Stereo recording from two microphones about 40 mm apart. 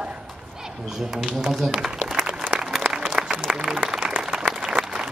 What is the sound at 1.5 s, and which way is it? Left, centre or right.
Speech, centre.